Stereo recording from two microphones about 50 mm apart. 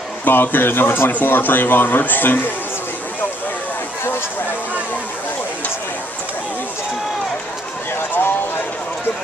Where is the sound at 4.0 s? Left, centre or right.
Left.